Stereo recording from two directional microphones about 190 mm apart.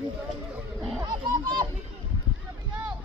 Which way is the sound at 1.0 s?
25° right (ahead or behind).